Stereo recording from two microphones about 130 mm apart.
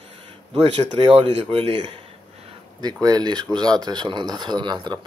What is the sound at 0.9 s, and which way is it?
Speech, 45° right (ahead or behind).